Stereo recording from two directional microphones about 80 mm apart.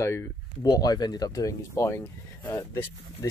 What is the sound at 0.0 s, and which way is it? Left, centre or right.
Speech, left.